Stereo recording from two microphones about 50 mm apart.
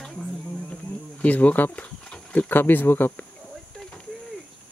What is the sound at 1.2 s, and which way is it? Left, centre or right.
Speech, left.